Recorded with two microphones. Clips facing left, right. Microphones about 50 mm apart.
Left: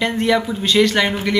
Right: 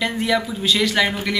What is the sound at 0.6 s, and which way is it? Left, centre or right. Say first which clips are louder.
Speech: left 4 dB; centre.